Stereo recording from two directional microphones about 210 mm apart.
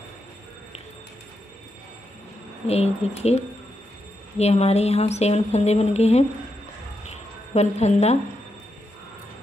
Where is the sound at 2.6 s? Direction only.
30° left (ahead or behind).